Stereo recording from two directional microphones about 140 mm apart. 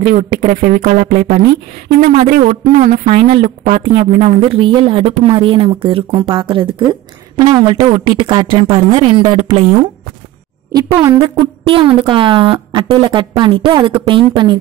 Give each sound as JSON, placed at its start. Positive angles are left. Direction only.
{"t": 0.0, "sound": "speech", "side_deg": -65}
{"t": 2.0, "sound": "speech", "side_deg": -85}
{"t": 2.5, "sound": "a woman's voice", "side_deg": -60}
{"t": 3.4, "sound": "speech", "side_deg": -80}
{"t": 3.8, "sound": "speech", "side_deg": -40}
{"t": 10.8, "sound": "speech", "side_deg": -25}